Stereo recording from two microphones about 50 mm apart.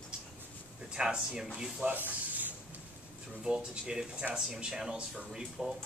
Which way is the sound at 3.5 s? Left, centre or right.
Centre.